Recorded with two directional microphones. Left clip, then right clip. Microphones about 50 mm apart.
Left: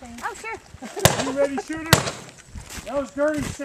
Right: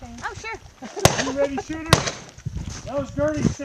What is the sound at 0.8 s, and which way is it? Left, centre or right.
Speech, left.